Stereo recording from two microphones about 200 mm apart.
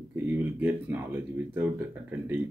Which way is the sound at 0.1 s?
10° right (ahead or behind).